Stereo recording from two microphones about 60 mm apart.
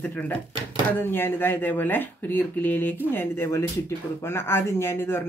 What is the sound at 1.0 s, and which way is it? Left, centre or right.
Speech, left.